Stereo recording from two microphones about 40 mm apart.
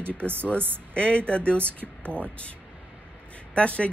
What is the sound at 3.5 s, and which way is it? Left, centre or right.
Speech, left.